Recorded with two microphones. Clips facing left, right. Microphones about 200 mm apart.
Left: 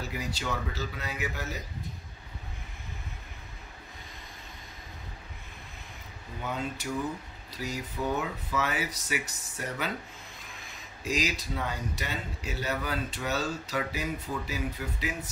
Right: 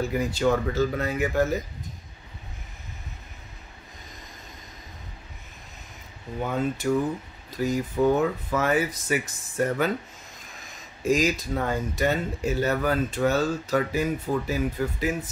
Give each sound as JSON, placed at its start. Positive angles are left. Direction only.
{"t": 0.0, "sound": "speech", "side_deg": -50}
{"t": 6.4, "sound": "speech", "side_deg": -50}
{"t": 11.1, "sound": "speech", "side_deg": -50}